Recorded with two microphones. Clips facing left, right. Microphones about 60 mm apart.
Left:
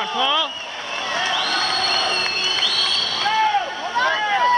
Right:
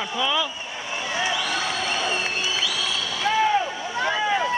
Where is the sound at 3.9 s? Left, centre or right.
Left.